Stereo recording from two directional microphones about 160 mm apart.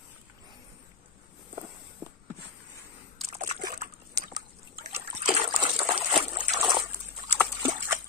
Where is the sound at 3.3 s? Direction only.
50° right (ahead or behind).